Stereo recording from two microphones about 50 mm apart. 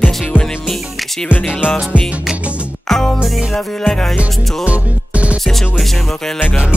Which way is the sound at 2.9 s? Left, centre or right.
Centre.